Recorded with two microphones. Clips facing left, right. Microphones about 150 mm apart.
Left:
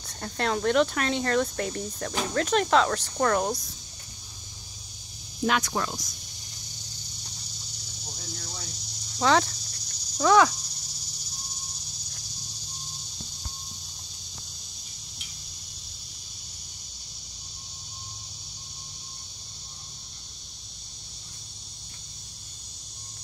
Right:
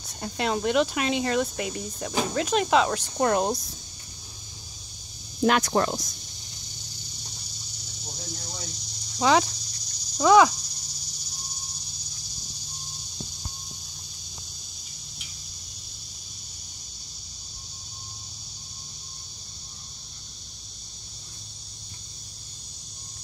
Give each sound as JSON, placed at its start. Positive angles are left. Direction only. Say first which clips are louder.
{"t": 0.0, "sound": "speech", "louder": "right 1 dB", "side_deg": -15}
{"t": 3.2, "sound": "speech", "louder": "right 2 dB", "side_deg": -25}
{"t": 5.4, "sound": "speech", "louder": "right 5 dB", "side_deg": -45}
{"t": 9.2, "sound": "speech", "louder": "right 1 dB", "side_deg": -15}